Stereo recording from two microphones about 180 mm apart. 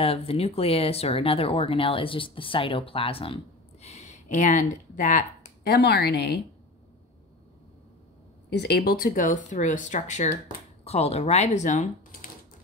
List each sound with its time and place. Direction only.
0.0 s speech: 35° left (ahead or behind); by 6.4 s 65° left (ahead or behind)
8.5 s speech: 65° left (ahead or behind); by 12.3 s 45° left (ahead or behind)